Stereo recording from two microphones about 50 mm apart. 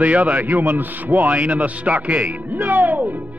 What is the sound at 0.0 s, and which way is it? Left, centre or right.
A man's voice, right.